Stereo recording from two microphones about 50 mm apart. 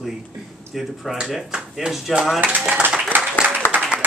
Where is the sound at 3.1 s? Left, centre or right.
Right.